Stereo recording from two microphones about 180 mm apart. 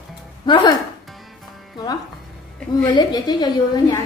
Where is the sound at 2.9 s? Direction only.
25° left (ahead or behind).